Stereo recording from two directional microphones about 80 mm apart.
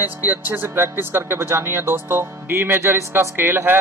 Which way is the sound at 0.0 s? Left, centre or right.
Right.